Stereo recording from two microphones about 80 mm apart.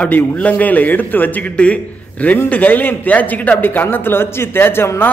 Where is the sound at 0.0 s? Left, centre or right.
Centre.